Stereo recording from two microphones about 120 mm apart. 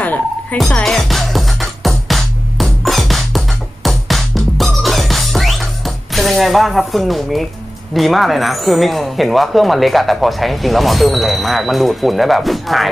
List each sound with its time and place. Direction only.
0.0 s music: 15° left (ahead or behind)
7.9 s speech: centre (ahead or behind)